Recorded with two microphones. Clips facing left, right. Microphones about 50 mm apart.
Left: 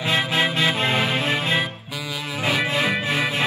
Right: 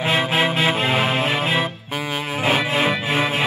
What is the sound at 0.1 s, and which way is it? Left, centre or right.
Music, centre.